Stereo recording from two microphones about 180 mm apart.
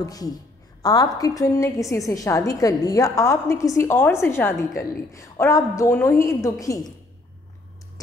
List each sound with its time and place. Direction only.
0.0 s a woman's voice: 20° left (ahead or behind)